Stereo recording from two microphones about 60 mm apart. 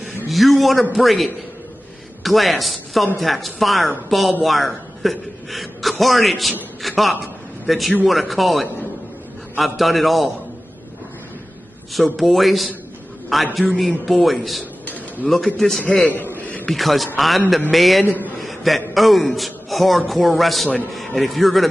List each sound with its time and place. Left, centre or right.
0.3 s a man's voice: centre
7.6 s a man's voice: centre
11.9 s a woman's voice: centre
16.1 s a sound: left
16.6 s a woman's voice: centre